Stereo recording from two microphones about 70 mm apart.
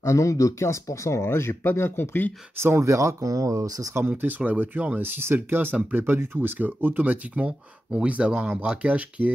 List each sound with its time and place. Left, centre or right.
0.0 s speech: left
2.5 s speech: right
4.1 s speech: right